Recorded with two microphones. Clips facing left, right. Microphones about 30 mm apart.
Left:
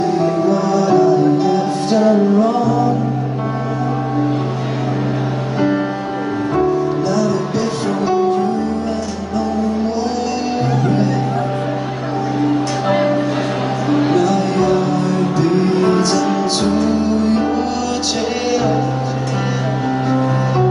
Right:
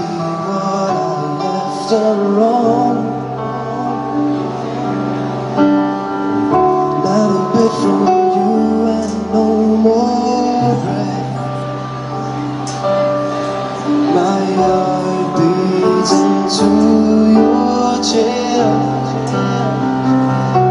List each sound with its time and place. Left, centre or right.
0.7 s music: centre
5.6 s music: centre
10.4 s music: centre
12.8 s music: centre
16.2 s music: centre
20.1 s music: centre